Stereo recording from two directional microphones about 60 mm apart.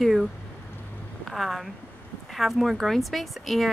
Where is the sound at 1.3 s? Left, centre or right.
Centre.